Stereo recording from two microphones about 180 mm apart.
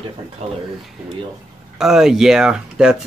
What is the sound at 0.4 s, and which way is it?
Speech, 35° right (ahead or behind).